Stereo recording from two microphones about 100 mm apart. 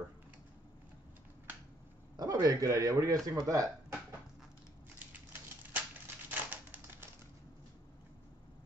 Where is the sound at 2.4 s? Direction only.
35° right (ahead or behind).